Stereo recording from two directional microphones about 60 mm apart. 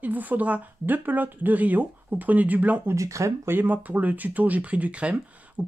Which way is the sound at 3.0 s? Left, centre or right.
Right.